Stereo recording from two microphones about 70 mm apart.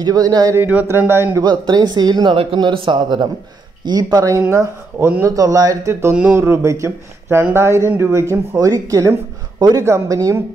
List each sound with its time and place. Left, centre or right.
0.0 s a man's voice: right
0.6 s speech: right
0.8 s speech: right
1.4 s speech: right
3.8 s speech: right
5.2 s a man's voice: right
6.3 s speech: right
9.6 s speech: right
9.8 s speech: right